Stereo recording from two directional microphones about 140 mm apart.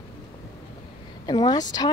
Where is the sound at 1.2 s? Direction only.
30° left (ahead or behind).